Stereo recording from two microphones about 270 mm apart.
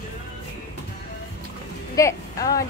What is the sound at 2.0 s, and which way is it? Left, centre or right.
Speech, centre.